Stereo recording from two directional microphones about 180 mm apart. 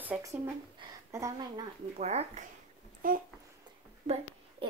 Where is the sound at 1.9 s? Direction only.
35° right (ahead or behind).